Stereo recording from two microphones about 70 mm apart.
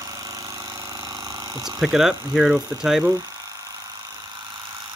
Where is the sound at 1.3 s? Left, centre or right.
Right.